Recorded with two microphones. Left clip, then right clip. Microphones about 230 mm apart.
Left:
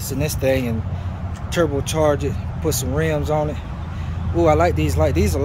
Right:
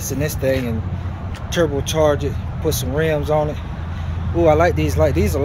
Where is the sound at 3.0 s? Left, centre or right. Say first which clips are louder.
Right 3 dB; centre.